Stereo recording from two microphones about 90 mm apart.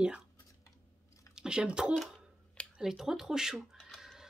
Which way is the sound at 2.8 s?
5° right (ahead or behind).